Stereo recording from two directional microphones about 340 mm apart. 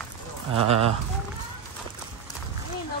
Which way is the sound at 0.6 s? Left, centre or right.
Centre.